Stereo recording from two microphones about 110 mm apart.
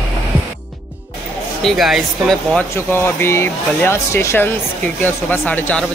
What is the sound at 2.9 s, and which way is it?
Speech, 20° left (ahead or behind).